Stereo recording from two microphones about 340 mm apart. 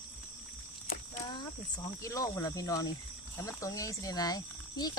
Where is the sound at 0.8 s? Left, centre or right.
Left.